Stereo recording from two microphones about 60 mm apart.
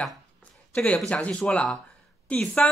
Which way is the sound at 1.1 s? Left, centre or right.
Left.